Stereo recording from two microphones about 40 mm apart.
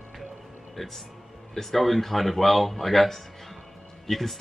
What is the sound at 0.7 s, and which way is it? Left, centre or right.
Speech, centre.